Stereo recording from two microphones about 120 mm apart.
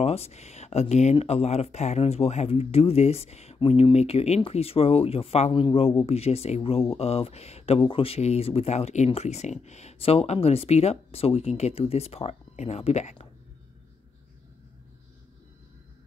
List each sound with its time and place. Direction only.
0.0 s speech: 60° left (ahead or behind)
3.5 s speech: 50° left (ahead or behind); by 13.3 s 70° left (ahead or behind)